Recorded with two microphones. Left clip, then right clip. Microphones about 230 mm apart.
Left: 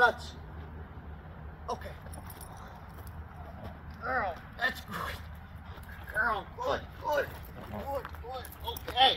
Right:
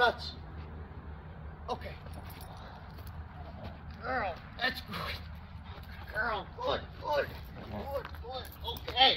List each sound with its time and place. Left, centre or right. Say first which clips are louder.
1.7 s speech: left 1 dB; centre
3.6 s a sound: left 2 dB; centre
6.1 s speech: left 3 dB; centre